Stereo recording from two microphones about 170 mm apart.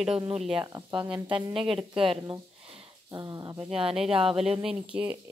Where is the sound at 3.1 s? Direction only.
20° right (ahead or behind).